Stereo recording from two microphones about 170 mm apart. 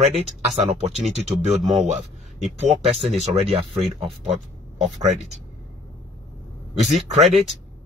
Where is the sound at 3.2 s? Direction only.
35° right (ahead or behind).